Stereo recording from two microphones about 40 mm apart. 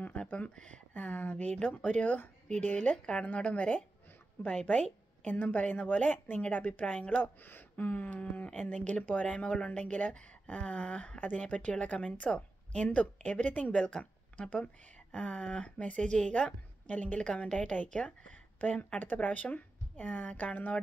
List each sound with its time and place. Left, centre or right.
0.0 s a sound: left
0.9 s speech: left
2.6 s a sound: left
3.5 s a woman's voice: left
5.3 s a sound: left
5.6 s a woman's voice: left
6.1 s a woman's voice: left
6.5 s a woman's voice: left
7.7 s a sound: left
8.2 s a woman's voice: left
11.1 s a woman's voice: left
13.7 s a woman's voice: left
17.2 s a woman's voice: left